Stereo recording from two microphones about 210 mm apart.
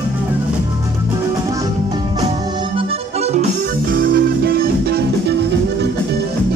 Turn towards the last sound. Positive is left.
turn(degrees=-50)  # may be behind; listen again after turning